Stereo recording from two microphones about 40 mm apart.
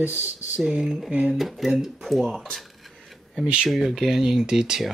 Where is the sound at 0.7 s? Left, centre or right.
Centre.